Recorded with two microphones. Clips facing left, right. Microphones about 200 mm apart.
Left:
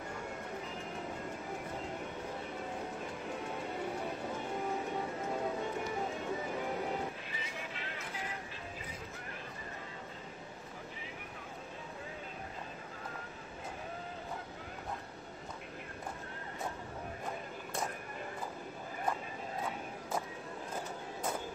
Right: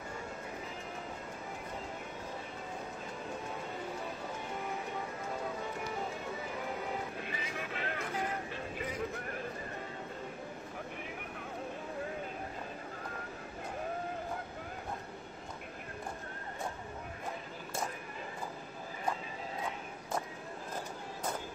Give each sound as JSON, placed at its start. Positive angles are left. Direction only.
{"t": 7.2, "sound": "vehicle", "side_deg": -55}